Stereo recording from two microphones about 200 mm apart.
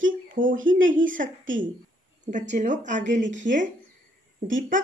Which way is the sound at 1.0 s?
40° right (ahead or behind).